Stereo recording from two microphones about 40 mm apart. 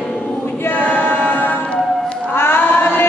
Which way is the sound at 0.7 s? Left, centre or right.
Left.